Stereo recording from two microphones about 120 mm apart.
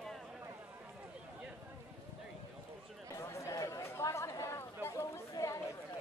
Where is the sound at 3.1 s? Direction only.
25° left (ahead or behind).